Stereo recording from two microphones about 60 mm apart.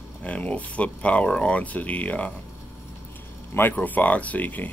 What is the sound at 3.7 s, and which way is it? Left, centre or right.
Speech, left.